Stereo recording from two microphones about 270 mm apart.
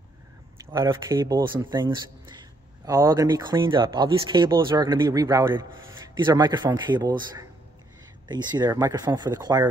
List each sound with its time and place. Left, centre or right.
0.6 s speech: centre